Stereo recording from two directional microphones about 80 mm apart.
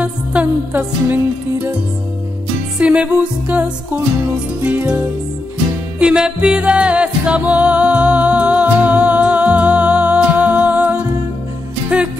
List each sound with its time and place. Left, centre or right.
0.0 s music: centre
2.8 s music: centre